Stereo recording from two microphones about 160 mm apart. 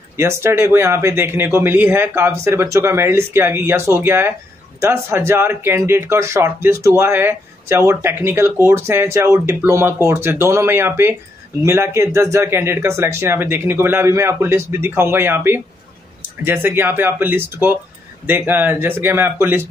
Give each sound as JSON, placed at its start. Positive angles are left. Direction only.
{"t": 0.2, "sound": "speech", "side_deg": -15}